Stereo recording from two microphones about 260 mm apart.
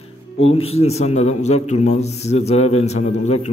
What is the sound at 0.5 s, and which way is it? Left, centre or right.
A man's voice, left.